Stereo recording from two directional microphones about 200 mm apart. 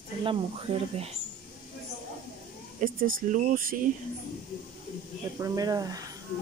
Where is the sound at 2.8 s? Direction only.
45° right (ahead or behind).